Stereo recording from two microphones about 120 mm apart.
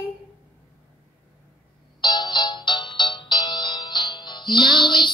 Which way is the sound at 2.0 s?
40° left (ahead or behind).